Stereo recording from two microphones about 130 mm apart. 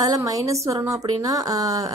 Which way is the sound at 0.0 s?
25° right (ahead or behind).